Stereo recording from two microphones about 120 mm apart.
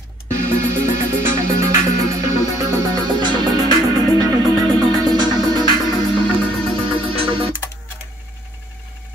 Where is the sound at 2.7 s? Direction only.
35° right (ahead or behind); by 7.5 s 50° right (ahead or behind).